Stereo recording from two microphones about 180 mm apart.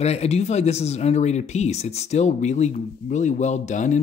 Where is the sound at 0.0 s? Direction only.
35° left (ahead or behind).